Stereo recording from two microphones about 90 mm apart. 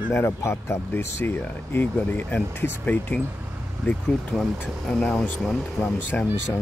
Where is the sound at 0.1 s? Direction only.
30° left (ahead or behind).